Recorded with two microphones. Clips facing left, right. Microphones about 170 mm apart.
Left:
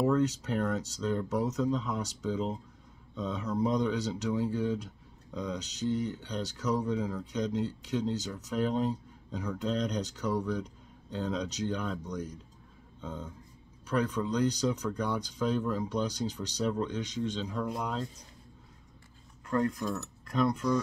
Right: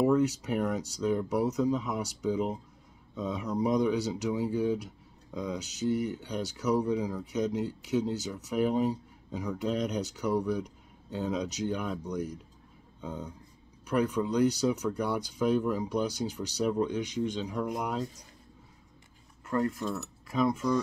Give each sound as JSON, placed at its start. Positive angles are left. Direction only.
{"t": 0.0, "sound": "speech", "side_deg": -10}
{"t": 19.4, "sound": "speech", "side_deg": -5}